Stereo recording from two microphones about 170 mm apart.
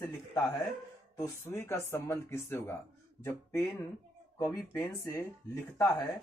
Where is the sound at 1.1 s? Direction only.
15° left (ahead or behind).